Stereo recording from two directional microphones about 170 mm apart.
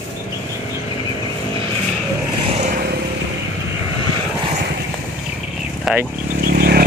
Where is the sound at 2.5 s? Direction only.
40° right (ahead or behind).